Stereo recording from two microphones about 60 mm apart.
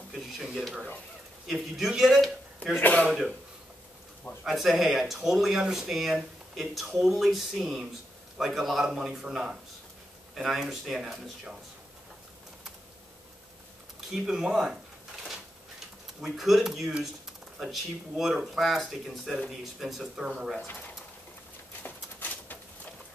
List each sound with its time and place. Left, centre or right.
0.1 s speech: centre
2.8 s speech: left
3.1 s speech: centre
4.5 s speech: centre
14.1 s speech: centre
16.2 s speech: centre
21.8 s a sound: left